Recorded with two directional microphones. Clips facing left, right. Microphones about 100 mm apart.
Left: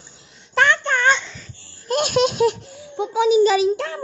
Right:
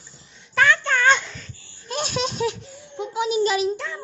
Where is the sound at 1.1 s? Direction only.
Centre (ahead or behind).